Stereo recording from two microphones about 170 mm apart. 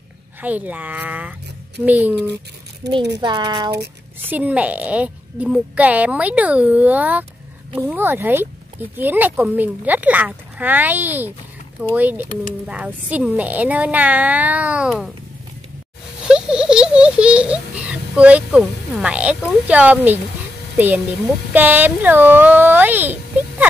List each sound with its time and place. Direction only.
0.4 s a woman's voice: 10° right (ahead or behind)
2.8 s a child's voice: 90° right
3.2 s a child's voice: 25° right (ahead or behind)
4.3 s a woman's voice: 10° right (ahead or behind)
16.3 s a woman's voice: 5° right (ahead or behind)